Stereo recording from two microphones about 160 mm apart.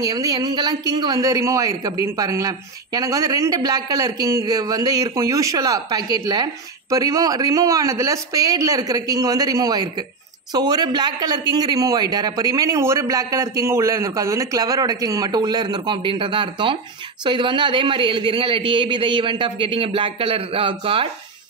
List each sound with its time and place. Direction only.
0.0 s a man's voice: 20° right (ahead or behind)